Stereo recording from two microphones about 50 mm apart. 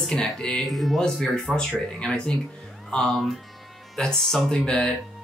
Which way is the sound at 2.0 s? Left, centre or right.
Centre.